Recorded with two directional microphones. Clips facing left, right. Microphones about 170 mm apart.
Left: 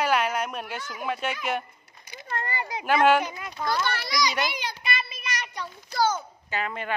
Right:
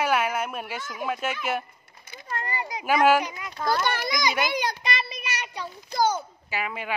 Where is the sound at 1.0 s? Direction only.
Centre (ahead or behind).